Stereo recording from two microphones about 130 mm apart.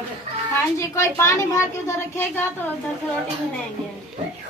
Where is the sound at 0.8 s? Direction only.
20° left (ahead or behind).